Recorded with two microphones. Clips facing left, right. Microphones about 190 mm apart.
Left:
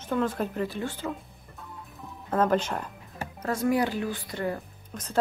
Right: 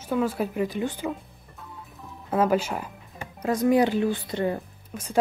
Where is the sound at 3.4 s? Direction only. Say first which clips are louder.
Right 5 dB; 20° right (ahead or behind).